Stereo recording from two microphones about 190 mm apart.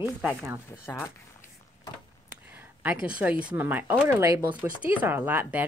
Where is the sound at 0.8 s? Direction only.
10° left (ahead or behind).